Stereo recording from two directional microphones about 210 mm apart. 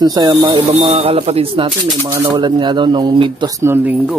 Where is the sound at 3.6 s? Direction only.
10° right (ahead or behind).